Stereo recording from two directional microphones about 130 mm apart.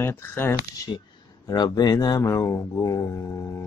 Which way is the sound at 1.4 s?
30° left (ahead or behind).